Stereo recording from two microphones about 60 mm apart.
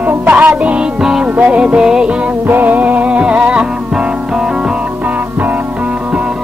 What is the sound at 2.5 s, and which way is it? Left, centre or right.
Music, right.